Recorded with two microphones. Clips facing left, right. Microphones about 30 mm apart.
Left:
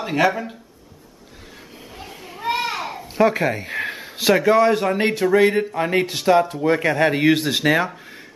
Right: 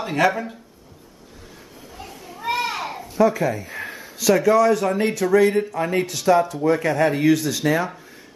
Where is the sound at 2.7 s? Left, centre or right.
Centre.